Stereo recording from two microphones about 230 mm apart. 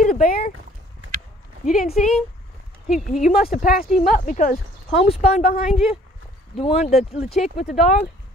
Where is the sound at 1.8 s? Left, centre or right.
Left.